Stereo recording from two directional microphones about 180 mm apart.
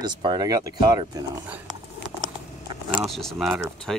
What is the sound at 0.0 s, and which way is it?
Speech, 25° right (ahead or behind).